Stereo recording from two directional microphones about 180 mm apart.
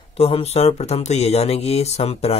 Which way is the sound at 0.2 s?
35° left (ahead or behind).